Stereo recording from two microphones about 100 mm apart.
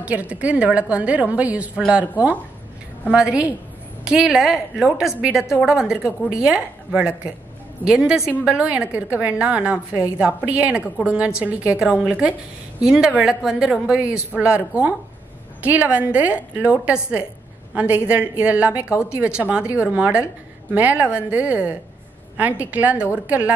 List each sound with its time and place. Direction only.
0.0 s a woman's voice: 15° right (ahead or behind)